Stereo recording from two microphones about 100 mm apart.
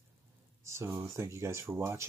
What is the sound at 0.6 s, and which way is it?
Speech, 25° right (ahead or behind).